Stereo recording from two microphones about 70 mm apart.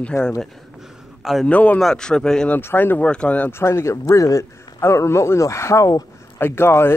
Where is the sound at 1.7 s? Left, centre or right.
Centre.